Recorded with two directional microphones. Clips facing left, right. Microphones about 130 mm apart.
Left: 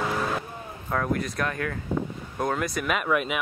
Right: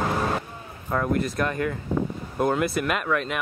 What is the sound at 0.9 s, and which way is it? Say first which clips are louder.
Speech: right 3 dB; 5° right (ahead or behind).